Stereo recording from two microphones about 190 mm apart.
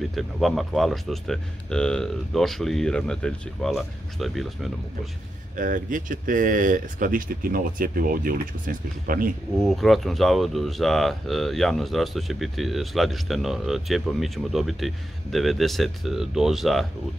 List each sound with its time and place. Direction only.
0.1 s speech: centre (ahead or behind)
5.6 s speech: 45° right (ahead or behind)
9.6 s speech: centre (ahead or behind)